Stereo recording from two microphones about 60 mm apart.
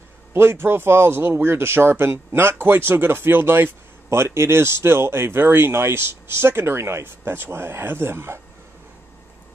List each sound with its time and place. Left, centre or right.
0.3 s speech: right